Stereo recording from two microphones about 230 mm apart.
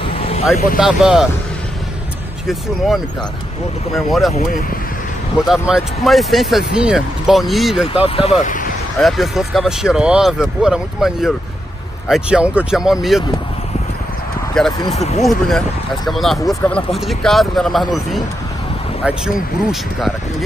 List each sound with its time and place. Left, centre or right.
0.1 s vehicle: left
0.7 s speech: centre
3.9 s speech: centre
5.5 s speech: centre
7.9 s speech: left
8.9 s speech: centre
14.6 s speech: centre
15.0 s speech: left
15.2 s speech: centre